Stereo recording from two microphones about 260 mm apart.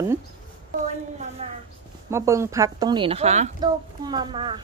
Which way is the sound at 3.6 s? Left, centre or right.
Centre.